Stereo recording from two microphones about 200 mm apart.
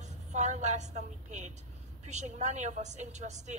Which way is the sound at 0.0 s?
35° right (ahead or behind).